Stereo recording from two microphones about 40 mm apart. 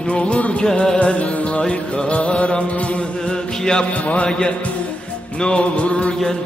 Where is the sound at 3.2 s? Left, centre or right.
Centre.